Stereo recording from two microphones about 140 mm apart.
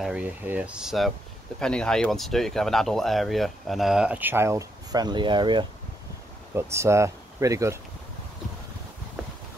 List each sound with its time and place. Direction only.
0.0 s speech: 10° right (ahead or behind); by 5.7 s 35° right (ahead or behind)
6.5 s speech: 20° right (ahead or behind)